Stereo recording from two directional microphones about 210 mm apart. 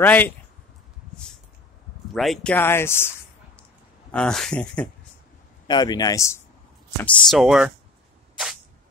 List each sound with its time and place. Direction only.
0.0 s speech: 10° left (ahead or behind)
2.1 s speech: centre (ahead or behind)
4.1 s speech: 5° left (ahead or behind)
5.7 s speech: 20° left (ahead or behind)
7.0 s speech: 5° left (ahead or behind)